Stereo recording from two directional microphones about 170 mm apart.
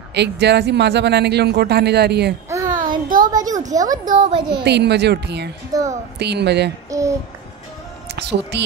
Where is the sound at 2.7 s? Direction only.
50° right (ahead or behind).